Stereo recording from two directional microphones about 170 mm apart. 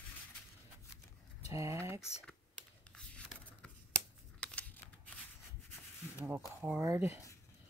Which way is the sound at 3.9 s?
10° left (ahead or behind).